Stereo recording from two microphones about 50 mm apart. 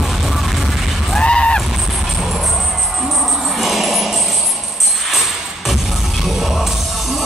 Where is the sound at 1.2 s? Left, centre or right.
Left.